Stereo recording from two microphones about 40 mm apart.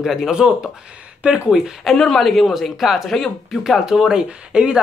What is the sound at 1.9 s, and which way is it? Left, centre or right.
Speech, centre.